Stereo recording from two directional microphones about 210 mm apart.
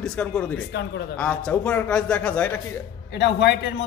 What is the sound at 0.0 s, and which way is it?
A man's voice, 5° left (ahead or behind).